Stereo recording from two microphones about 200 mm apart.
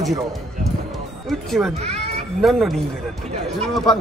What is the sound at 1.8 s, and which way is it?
Cat, 30° right (ahead or behind).